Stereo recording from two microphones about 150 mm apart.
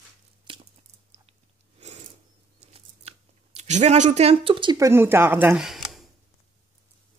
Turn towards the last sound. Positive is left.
turn(degrees=0)  # may be behind; listen again after turning